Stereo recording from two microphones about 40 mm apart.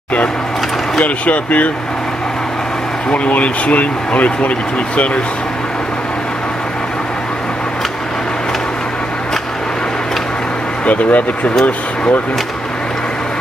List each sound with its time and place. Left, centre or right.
1.0 s speech: left
3.1 s speech: left
10.9 s speech: left